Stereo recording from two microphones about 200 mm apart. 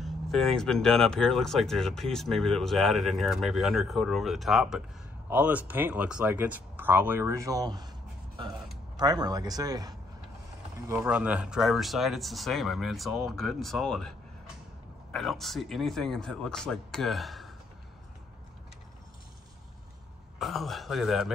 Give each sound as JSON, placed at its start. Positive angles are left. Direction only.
{"t": 0.0, "sound": "speech", "side_deg": 0}
{"t": 8.9, "sound": "a man's voice", "side_deg": -20}
{"t": 15.1, "sound": "speech", "side_deg": 0}
{"t": 20.3, "sound": "speech", "side_deg": 0}